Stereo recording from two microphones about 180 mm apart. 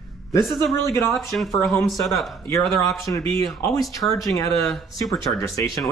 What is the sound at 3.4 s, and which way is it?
Speech, 20° left (ahead or behind).